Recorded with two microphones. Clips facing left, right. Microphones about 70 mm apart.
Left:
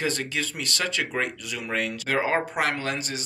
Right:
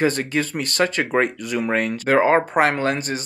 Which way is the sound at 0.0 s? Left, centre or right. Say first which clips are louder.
Right 8 dB; right.